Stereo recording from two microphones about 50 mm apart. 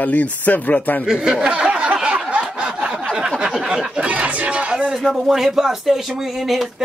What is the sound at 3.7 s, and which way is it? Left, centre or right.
Speech, right.